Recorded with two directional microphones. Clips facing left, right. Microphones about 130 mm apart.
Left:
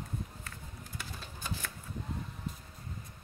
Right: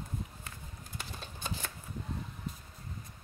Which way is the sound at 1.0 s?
25° right (ahead or behind).